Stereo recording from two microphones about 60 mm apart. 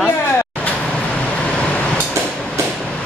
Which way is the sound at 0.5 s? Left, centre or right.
Centre.